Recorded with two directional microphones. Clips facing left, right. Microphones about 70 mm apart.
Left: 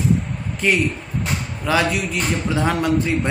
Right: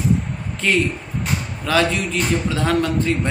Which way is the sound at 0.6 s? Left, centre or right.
Centre.